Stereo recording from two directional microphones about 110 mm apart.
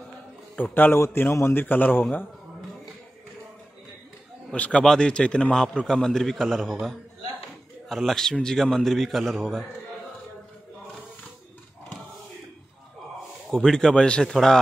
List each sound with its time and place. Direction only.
0.6 s a man's voice: 15° left (ahead or behind)
4.5 s a man's voice: 10° left (ahead or behind)
13.5 s a man's voice: 5° left (ahead or behind)